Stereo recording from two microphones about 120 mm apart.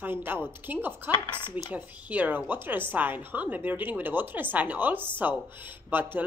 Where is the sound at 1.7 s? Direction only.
15° right (ahead or behind).